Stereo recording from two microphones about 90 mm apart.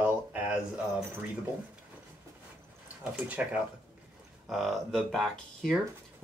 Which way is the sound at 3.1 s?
15° right (ahead or behind).